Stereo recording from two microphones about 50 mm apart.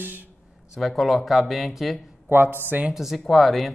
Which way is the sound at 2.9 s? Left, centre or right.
Centre.